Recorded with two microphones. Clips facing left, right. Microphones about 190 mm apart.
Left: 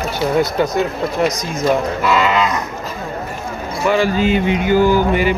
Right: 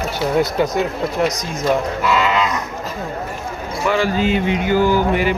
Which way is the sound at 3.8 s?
15° left (ahead or behind).